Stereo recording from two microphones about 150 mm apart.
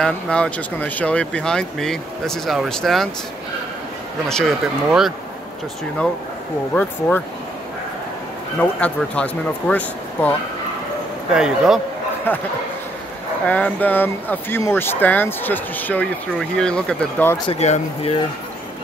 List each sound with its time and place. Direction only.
0.0 s speech: 5° left (ahead or behind)
4.3 s speech: centre (ahead or behind)
6.7 s speech: 10° left (ahead or behind)
8.5 s speech: 10° left (ahead or behind)
11.3 s speech: 5° right (ahead or behind)
12.3 s speech: 15° left (ahead or behind)
13.5 s speech: 10° left (ahead or behind)
17.5 s speech: 45° left (ahead or behind)